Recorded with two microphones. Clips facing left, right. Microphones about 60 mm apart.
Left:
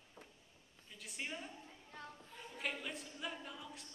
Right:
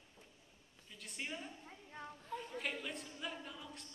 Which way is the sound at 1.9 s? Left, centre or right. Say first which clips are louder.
Right 2 dB; right.